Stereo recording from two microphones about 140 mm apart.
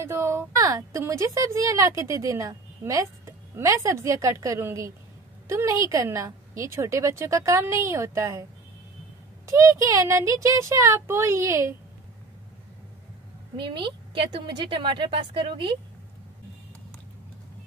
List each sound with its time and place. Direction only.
0.0 s a woman's voice: 20° right (ahead or behind)
9.5 s a woman's voice: 25° right (ahead or behind)
13.6 s a woman's voice: 35° right (ahead or behind)